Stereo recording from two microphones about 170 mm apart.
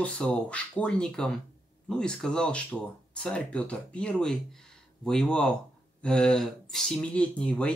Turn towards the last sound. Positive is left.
turn(degrees=5)  # may be behind; listen again after turning